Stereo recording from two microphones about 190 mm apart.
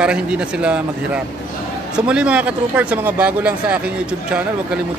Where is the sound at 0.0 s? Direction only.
5° right (ahead or behind).